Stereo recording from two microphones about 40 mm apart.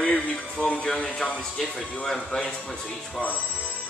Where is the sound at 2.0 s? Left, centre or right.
Centre.